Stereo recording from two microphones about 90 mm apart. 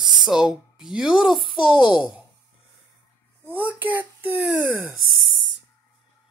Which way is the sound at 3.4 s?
20° right (ahead or behind).